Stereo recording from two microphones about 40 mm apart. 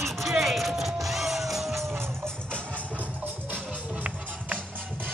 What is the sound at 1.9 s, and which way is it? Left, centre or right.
Music, right.